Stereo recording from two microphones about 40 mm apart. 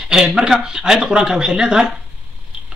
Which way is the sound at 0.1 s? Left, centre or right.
Centre.